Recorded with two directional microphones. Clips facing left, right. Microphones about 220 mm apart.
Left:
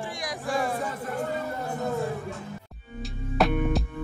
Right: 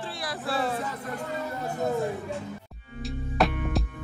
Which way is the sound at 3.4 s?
Centre (ahead or behind).